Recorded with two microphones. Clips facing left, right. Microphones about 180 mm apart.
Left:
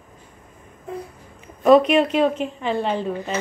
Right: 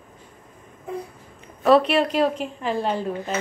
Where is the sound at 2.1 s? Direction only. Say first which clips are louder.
Left 2 dB; centre (ahead or behind).